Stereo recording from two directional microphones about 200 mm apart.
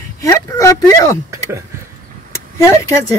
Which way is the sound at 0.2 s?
15° left (ahead or behind).